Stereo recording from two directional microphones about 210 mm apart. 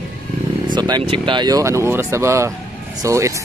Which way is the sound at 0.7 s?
20° right (ahead or behind).